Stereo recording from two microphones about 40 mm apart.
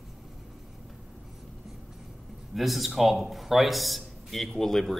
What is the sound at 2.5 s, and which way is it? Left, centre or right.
A man's voice, centre.